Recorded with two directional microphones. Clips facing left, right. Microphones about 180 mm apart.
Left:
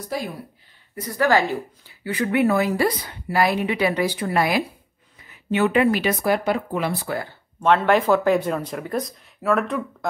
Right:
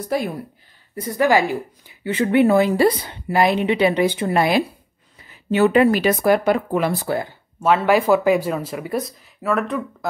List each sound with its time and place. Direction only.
0.1 s speech: 60° right (ahead or behind)
0.9 s speech: 20° right (ahead or behind); by 7.1 s 45° right (ahead or behind)
7.1 s speech: 20° right (ahead or behind)
7.6 s speech: 5° right (ahead or behind)